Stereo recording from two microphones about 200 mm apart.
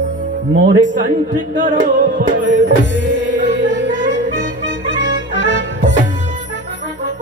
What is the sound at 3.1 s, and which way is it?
Music, 65° left (ahead or behind).